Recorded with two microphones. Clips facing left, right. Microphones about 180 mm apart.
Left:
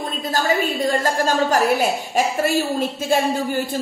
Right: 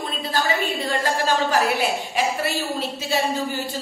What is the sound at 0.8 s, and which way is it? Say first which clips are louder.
A woman's voice: left 3 dB; 45° left (ahead or behind).